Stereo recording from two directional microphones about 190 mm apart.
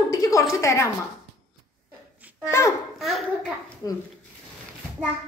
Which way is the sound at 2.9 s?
Centre (ahead or behind).